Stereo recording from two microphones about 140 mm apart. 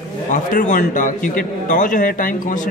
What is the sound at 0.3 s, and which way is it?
A man's voice, 65° left (ahead or behind).